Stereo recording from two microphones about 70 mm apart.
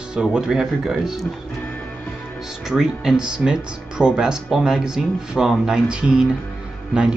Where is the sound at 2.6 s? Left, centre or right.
Centre.